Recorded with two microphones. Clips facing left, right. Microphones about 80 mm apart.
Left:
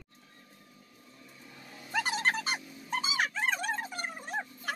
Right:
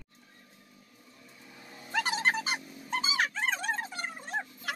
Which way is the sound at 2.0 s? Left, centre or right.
Centre.